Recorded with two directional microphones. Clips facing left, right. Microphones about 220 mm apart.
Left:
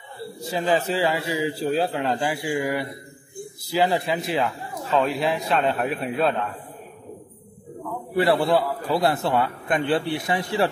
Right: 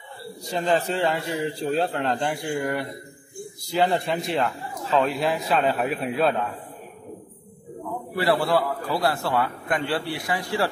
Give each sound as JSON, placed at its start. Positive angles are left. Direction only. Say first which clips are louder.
{"t": 0.5, "sound": "a man's voice", "louder": "left 1 dB", "side_deg": 5}
{"t": 8.2, "sound": "a man's voice", "louder": "left 2 dB", "side_deg": 20}